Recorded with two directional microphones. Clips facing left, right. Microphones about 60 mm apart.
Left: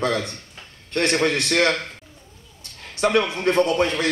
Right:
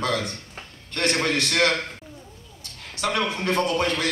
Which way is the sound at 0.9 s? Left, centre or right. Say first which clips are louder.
Left 4 dB; left.